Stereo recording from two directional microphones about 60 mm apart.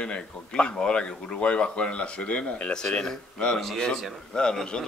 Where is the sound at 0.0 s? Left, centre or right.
Centre.